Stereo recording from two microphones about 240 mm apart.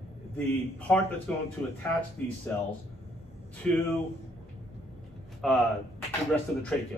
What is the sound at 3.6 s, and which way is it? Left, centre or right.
Speech, centre.